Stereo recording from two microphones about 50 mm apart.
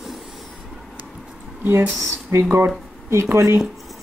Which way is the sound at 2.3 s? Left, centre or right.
Right.